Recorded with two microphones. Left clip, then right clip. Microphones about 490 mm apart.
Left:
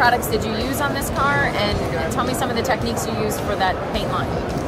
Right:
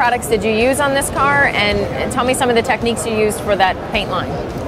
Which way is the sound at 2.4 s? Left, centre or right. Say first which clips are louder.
Right 6 dB; right.